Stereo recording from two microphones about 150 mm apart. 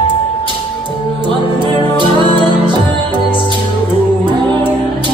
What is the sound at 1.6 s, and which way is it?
Music, 30° right (ahead or behind).